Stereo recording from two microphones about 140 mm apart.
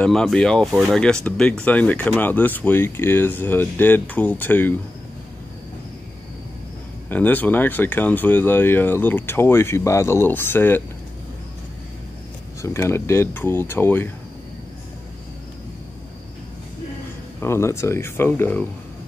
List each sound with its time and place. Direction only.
0.0 s speech: 5° left (ahead or behind)
7.1 s speech: 10° left (ahead or behind)
12.6 s speech: 20° left (ahead or behind)
17.4 s speech: 20° left (ahead or behind)